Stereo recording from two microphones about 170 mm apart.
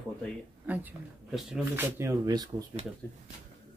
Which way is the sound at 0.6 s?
10° right (ahead or behind).